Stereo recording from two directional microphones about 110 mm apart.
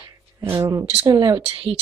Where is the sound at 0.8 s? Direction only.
60° right (ahead or behind).